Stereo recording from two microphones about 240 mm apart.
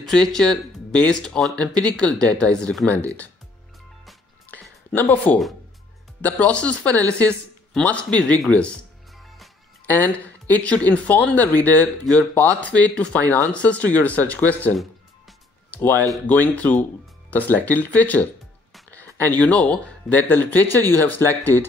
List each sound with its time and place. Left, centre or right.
0.1 s speech: centre
4.0 s music: centre
6.2 s speech: centre
9.2 s music: centre
10.5 s speech: centre